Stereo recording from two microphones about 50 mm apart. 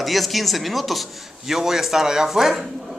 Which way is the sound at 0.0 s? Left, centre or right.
Centre.